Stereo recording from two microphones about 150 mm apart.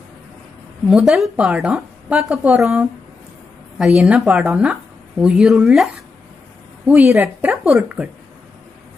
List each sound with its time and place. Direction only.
0.8 s a woman's voice: 5° right (ahead or behind)
2.6 s a woman's voice: 15° right (ahead or behind)
3.7 s a woman's voice: 5° right (ahead or behind)